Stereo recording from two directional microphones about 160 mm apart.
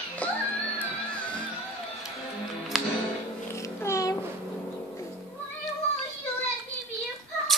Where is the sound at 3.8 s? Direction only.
20° left (ahead or behind).